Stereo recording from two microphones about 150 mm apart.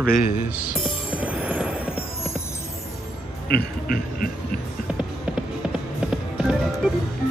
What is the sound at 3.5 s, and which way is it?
Speech, 75° left (ahead or behind).